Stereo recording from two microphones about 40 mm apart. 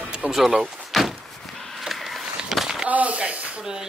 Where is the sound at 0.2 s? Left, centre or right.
Right.